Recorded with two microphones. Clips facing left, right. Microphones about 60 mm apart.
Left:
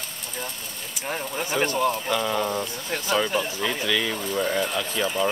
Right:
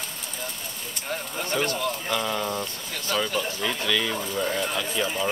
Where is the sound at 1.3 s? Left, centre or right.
Centre.